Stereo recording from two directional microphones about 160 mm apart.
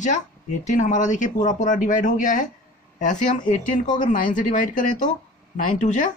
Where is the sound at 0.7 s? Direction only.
50° left (ahead or behind).